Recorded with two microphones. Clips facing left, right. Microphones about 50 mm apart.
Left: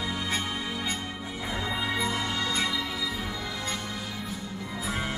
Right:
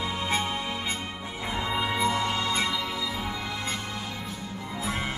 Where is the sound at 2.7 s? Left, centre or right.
Centre.